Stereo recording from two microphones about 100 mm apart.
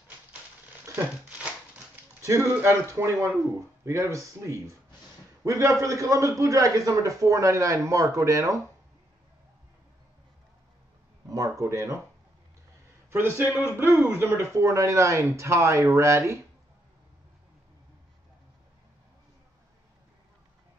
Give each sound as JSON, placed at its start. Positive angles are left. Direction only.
{"t": 0.9, "sound": "speech", "side_deg": -15}
{"t": 2.2, "sound": "a man's voice", "side_deg": -30}
{"t": 11.2, "sound": "speech", "side_deg": -35}
{"t": 13.1, "sound": "speech", "side_deg": -20}